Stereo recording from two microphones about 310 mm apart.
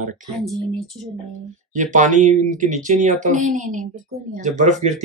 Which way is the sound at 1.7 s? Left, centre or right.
Right.